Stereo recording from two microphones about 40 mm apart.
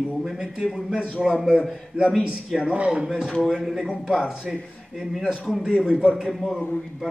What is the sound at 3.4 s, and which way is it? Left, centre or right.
A man's voice, centre.